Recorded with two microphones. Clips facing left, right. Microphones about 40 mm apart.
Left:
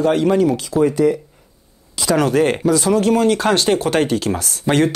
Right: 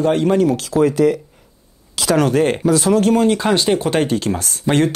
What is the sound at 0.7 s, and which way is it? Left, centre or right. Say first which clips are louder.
Speech: right 1 dB; right.